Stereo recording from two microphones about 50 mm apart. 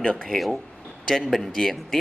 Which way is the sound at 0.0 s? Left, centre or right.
Centre.